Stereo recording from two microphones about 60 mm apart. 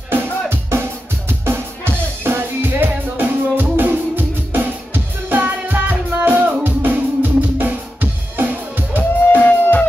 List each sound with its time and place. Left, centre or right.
0.1 s music: right
9.3 s music: left